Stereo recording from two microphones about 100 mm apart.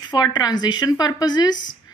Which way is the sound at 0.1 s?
45° left (ahead or behind).